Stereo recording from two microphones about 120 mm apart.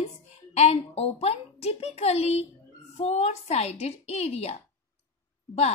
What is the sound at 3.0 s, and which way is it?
Speech, 65° left (ahead or behind).